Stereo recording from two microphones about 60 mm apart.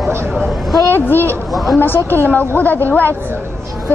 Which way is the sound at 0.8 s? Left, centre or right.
Left.